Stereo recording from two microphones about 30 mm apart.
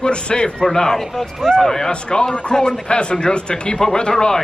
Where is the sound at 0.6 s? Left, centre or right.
Centre.